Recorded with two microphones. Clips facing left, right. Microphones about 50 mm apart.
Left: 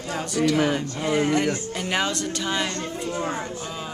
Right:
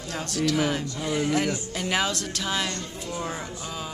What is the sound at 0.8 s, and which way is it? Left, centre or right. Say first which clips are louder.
Speech: left 4 dB; left.